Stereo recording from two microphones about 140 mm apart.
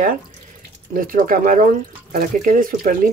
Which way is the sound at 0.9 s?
90° right.